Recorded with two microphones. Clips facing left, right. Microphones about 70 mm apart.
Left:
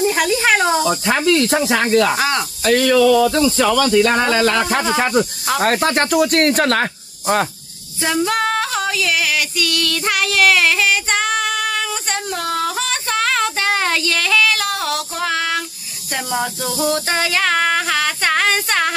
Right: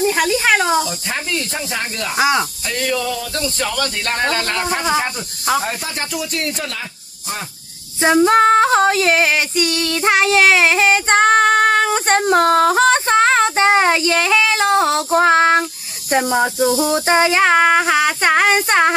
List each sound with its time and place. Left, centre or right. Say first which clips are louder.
0.0 s speech: even; centre
0.8 s speech: left 8 dB; left
2.1 s a sound: right 3 dB; centre
2.6 s speech: left 8 dB; left
4.9 s speech: left 4 dB; left
5.6 s speech: left 8 dB; left
8.0 s female singing: right 6 dB; right
16.1 s speech: right 7 dB; right
16.3 s a sound: right 2 dB; centre
17.1 s a sound: right 5 dB; right